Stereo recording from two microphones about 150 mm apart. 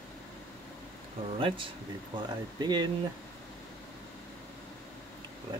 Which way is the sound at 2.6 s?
30° right (ahead or behind).